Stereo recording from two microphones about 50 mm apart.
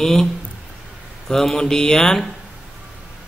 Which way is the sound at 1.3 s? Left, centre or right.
Centre.